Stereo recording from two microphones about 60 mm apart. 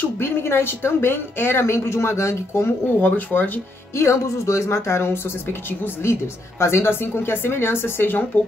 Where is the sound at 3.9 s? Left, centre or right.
Left.